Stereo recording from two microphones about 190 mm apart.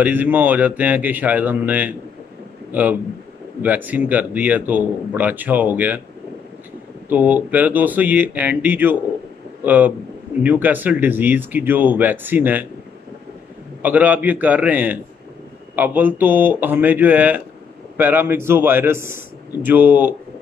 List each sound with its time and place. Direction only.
0.0 s a man's voice: 10° right (ahead or behind)
7.1 s a man's voice: 10° right (ahead or behind)
13.8 s a man's voice: 10° right (ahead or behind)